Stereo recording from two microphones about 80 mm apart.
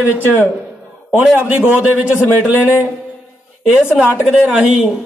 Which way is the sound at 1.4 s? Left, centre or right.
Centre.